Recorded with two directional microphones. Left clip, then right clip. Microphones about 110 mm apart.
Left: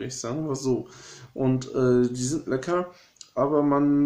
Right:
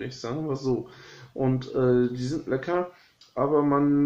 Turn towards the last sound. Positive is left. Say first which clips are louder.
# even
turn(degrees=25)  # may be behind; listen again after turning